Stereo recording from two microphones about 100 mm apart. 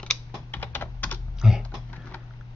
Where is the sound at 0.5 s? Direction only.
20° left (ahead or behind).